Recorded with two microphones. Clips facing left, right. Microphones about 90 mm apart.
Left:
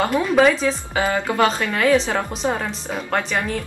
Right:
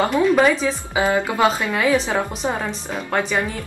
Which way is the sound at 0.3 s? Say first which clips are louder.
Even; centre (ahead or behind).